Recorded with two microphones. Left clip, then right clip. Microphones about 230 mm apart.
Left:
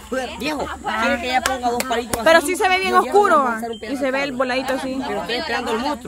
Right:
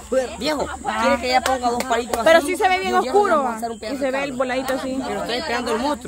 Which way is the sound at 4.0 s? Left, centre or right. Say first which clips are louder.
Left 2 dB; centre.